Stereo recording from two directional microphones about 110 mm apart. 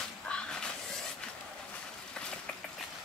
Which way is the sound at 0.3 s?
10° left (ahead or behind).